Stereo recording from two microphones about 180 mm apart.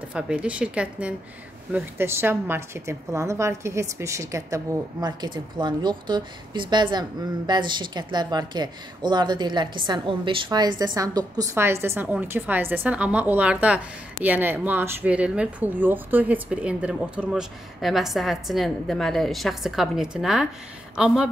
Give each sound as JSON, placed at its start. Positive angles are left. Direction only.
{"t": 0.1, "sound": "a woman's voice", "side_deg": -5}